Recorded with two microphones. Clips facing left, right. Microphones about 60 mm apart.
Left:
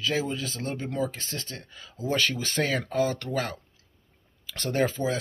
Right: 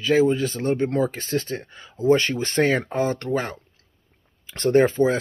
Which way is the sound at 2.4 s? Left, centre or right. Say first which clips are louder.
Right 7 dB; right.